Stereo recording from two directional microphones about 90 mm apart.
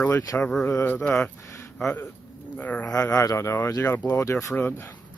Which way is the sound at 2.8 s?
40° left (ahead or behind).